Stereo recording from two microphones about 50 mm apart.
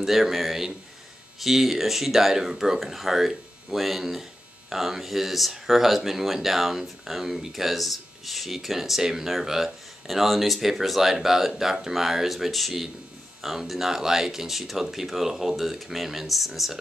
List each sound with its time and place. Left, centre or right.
0.0 s speech: centre